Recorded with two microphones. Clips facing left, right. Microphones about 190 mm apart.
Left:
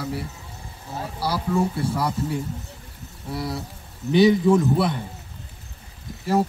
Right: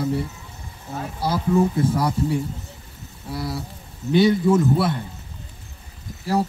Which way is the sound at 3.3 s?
Centre (ahead or behind).